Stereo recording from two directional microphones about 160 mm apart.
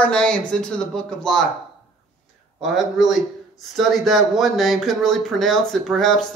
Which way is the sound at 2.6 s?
Centre (ahead or behind).